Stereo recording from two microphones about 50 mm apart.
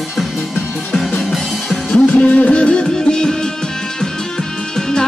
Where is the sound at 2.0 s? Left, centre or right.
Left.